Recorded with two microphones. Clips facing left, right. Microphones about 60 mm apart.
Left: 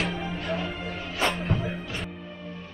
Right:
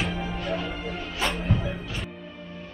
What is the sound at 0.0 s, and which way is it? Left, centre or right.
Music, centre.